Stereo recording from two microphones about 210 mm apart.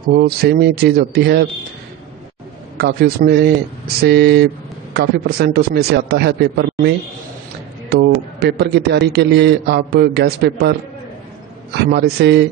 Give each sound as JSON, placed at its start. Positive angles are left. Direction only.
{"t": 0.1, "sound": "a man's voice", "side_deg": -50}
{"t": 2.8, "sound": "a man's voice", "side_deg": -45}
{"t": 7.9, "sound": "a man's voice", "side_deg": -50}
{"t": 11.7, "sound": "a man's voice", "side_deg": -50}